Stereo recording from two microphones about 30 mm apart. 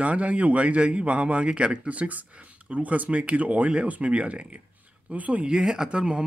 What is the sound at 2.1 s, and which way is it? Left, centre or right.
A man's voice, right.